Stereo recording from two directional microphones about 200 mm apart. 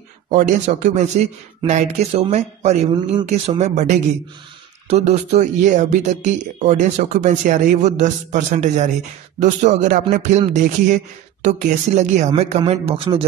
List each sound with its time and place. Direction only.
0.3 s speech: 40° right (ahead or behind)